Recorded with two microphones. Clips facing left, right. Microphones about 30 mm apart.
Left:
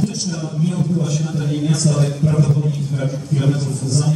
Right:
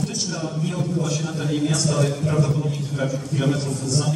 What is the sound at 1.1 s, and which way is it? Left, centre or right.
A man's voice, centre.